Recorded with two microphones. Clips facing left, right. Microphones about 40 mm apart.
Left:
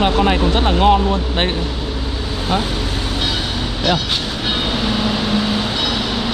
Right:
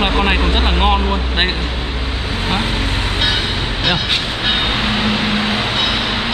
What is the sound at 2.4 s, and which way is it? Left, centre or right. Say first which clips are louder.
Vehicle: even; right.